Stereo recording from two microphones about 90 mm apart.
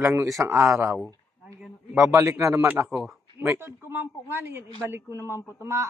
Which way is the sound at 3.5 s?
25° right (ahead or behind).